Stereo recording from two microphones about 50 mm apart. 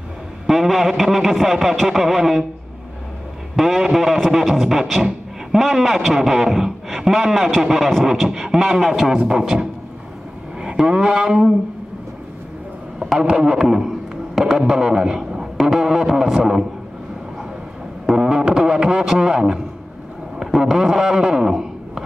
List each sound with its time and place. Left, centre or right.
0.5 s a man's voice: centre
3.5 s a man's voice: centre
7.0 s music: centre
7.6 s a man's voice: centre
8.0 s music: centre
8.5 s a man's voice: centre
9.3 s music: centre
10.9 s music: centre
13.2 s a man's voice: centre
14.6 s music: centre
18.1 s music: centre
20.7 s speech: centre